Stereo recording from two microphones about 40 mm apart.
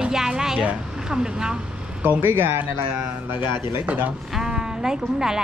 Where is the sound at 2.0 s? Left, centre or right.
Right.